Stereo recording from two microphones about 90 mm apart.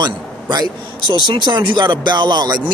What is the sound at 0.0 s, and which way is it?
A man's voice, 50° right (ahead or behind).